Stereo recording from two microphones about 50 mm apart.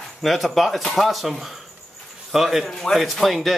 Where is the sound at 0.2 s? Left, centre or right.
Centre.